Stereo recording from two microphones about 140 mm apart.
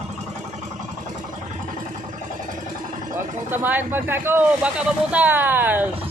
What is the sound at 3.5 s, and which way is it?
Speech, 15° right (ahead or behind).